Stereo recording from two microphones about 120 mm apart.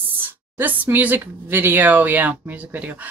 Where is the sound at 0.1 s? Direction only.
15° right (ahead or behind).